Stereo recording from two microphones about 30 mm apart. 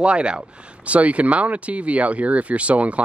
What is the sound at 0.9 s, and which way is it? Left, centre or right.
Speech, right.